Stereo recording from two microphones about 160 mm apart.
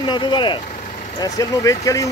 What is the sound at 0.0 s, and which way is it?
Speech, 30° left (ahead or behind).